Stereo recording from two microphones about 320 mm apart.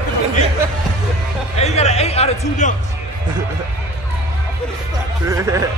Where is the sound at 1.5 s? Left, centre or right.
Centre.